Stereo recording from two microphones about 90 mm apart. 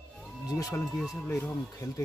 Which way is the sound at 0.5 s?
40° left (ahead or behind).